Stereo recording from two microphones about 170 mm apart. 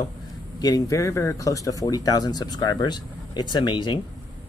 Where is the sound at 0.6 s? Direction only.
20° left (ahead or behind).